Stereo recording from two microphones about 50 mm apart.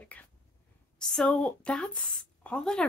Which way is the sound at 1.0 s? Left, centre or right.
Centre.